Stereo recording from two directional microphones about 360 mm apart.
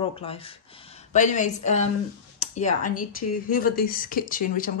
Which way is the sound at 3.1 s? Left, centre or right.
Left.